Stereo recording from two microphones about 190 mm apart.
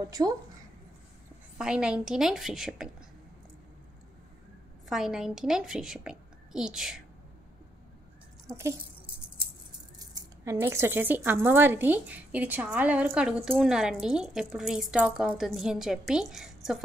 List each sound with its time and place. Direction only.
1.6 s a woman's voice: 5° right (ahead or behind)
4.8 s a woman's voice: centre (ahead or behind)
8.5 s speech: 15° right (ahead or behind)
9.9 s a woman's voice: 15° right (ahead or behind)